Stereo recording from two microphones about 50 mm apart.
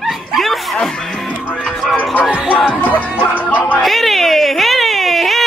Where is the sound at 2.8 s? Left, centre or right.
Left.